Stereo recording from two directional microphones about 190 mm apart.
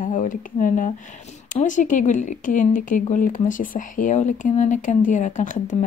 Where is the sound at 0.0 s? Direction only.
45° left (ahead or behind).